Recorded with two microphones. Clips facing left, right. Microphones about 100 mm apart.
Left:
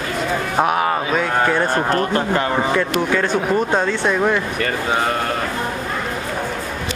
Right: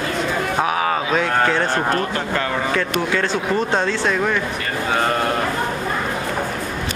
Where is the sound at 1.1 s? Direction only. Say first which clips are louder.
Even; 5° left (ahead or behind).